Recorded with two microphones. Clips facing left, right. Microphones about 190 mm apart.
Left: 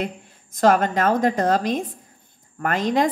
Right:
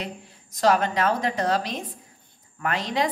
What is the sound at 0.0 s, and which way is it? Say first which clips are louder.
A woman's voice: left 6 dB; 50° left (ahead or behind).